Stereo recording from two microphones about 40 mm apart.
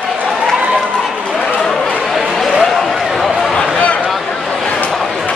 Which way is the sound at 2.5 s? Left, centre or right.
Centre.